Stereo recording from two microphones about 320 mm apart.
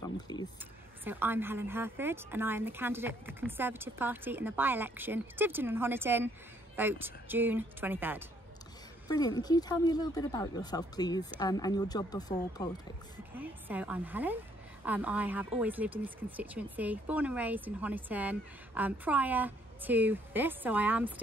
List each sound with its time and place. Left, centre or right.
0.0 s a sound: centre
1.0 s a woman's voice: centre
9.1 s speech: centre
13.3 s speech: centre